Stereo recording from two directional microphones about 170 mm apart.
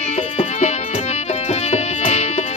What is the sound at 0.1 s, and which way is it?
Music, 40° left (ahead or behind).